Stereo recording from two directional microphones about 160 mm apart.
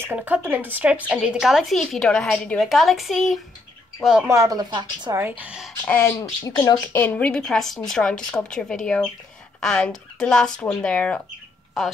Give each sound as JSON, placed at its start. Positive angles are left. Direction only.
{"t": 0.0, "sound": "a woman's voice", "side_deg": -10}
{"t": 4.3, "sound": "speech", "side_deg": -20}
{"t": 5.1, "sound": "speech", "side_deg": -10}
{"t": 5.9, "sound": "a woman's voice", "side_deg": 15}